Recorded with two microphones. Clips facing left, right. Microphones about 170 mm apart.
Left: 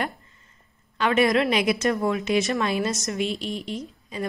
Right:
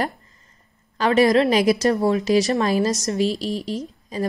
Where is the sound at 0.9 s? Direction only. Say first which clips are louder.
Right 4 dB; 35° right (ahead or behind).